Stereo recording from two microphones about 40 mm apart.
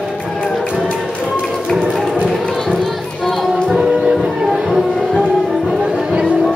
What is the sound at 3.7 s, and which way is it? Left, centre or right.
Music, centre.